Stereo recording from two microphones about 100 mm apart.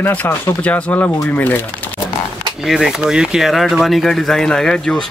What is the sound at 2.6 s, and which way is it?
Speech, 5° right (ahead or behind).